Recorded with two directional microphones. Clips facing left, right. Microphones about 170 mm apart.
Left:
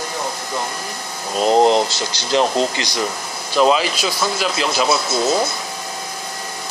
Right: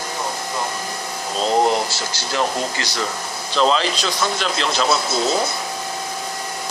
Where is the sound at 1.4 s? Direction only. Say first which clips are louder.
Left 4 dB; 20° left (ahead or behind).